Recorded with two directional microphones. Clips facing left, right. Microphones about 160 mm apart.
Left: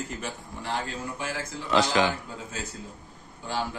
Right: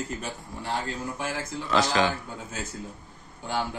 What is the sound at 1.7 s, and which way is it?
Speech, 20° left (ahead or behind).